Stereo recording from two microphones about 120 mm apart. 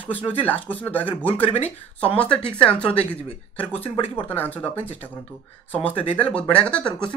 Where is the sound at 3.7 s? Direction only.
55° left (ahead or behind).